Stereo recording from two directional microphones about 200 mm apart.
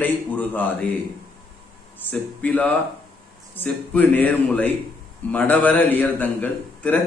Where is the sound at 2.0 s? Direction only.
5° left (ahead or behind).